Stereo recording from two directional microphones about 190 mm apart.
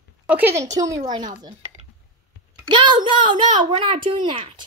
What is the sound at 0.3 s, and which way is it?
Speech, 10° right (ahead or behind).